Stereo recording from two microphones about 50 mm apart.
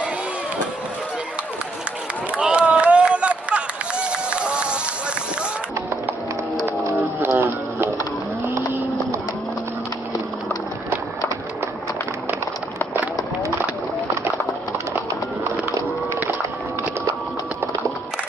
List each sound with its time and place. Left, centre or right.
2.3 s run: right
7.2 s music: right